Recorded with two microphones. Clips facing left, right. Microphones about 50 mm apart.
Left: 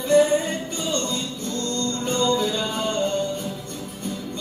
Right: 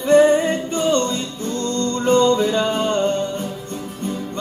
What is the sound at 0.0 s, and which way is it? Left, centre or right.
Music, right.